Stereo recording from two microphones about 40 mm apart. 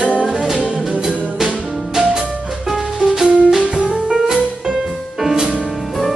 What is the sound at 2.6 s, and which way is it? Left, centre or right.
Music, centre.